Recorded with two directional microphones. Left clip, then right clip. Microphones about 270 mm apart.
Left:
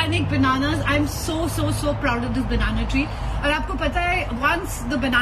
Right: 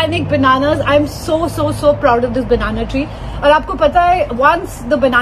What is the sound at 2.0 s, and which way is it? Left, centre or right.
A woman's voice, right.